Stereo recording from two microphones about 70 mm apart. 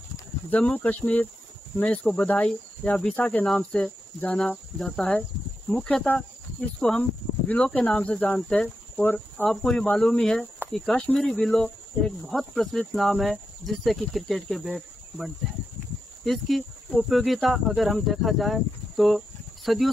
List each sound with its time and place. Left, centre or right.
0.7 s speech: left
3.2 s speech: left
3.4 s speech: centre
4.7 s speech: centre; by 8.4 s left
8.4 s speech: centre
9.0 s speech: left
9.5 s speech: centre